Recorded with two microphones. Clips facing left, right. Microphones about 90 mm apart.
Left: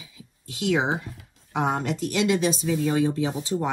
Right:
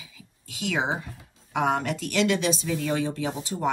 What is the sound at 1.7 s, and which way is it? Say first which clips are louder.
A woman's voice: even; 20° left (ahead or behind).